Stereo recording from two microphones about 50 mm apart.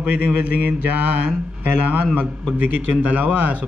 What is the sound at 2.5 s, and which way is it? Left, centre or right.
A man's voice, right.